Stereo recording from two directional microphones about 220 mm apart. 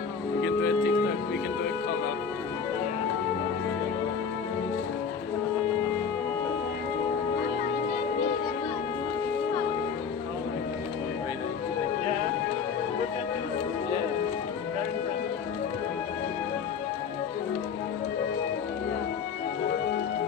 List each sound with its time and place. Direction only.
0.4 s music: 55° left (ahead or behind)